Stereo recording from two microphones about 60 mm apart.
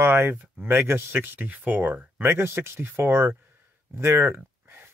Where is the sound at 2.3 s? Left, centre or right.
Right.